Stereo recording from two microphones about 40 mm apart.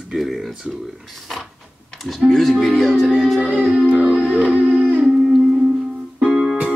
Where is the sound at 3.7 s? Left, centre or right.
Right.